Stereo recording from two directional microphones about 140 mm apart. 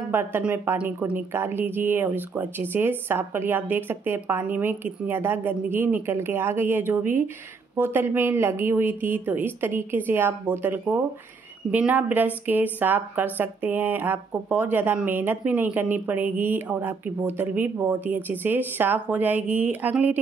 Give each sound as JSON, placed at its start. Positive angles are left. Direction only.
{"t": 0.1, "sound": "speech", "side_deg": -15}